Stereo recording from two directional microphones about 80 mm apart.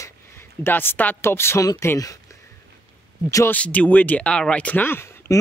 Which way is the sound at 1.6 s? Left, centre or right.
Left.